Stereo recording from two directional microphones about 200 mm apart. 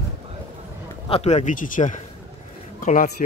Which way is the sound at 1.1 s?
35° left (ahead or behind).